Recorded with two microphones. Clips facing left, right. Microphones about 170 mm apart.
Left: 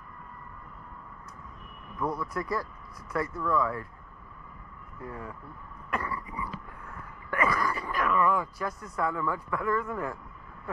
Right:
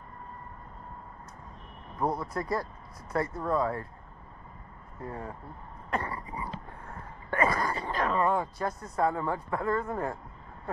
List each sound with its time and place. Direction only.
2.0 s speech: 30° right (ahead or behind)
5.0 s speech: 35° right (ahead or behind)
5.9 s throat clearing: 30° right (ahead or behind)